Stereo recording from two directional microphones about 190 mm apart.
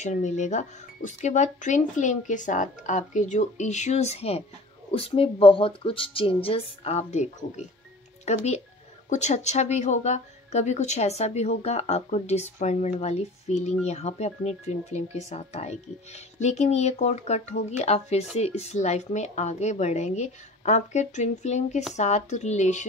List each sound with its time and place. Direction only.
0.0 s speech: 40° left (ahead or behind)